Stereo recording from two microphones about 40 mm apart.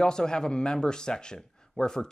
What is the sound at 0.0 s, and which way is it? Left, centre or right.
A man's voice, centre.